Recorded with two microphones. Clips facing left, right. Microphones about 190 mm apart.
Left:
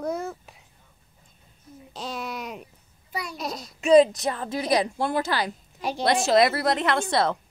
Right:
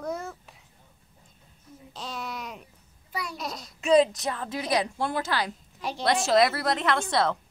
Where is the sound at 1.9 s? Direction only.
5° left (ahead or behind).